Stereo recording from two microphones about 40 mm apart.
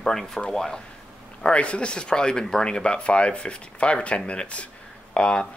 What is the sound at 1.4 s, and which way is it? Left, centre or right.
Speech, left.